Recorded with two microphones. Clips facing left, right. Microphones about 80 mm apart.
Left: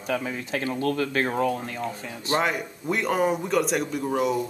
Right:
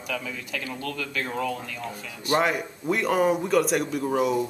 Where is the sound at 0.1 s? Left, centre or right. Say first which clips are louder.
Left 5 dB; left.